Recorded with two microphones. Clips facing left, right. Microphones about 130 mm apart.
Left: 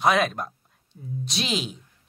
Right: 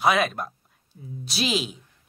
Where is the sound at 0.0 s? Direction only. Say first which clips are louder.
Even; centre (ahead or behind).